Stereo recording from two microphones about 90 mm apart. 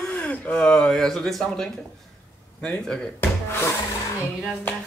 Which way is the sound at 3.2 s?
30° left (ahead or behind).